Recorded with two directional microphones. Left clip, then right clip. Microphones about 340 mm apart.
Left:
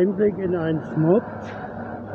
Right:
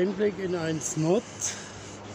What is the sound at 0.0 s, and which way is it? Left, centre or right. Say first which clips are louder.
Speech: left 6 dB; left.